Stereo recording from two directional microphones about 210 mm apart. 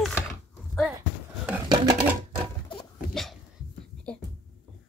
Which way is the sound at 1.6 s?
20° right (ahead or behind).